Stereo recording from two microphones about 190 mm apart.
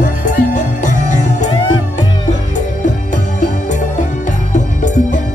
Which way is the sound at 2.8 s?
40° left (ahead or behind).